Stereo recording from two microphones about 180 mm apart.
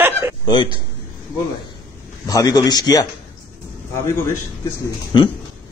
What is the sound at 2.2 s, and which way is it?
Speech, 20° left (ahead or behind).